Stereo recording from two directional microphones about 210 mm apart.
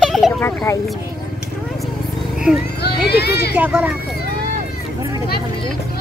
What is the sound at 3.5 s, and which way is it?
Children playing, 10° right (ahead or behind).